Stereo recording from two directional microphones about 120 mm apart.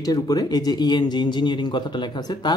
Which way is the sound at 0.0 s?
30° left (ahead or behind).